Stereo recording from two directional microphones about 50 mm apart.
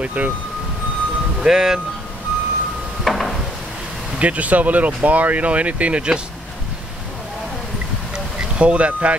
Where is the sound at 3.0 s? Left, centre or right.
Centre.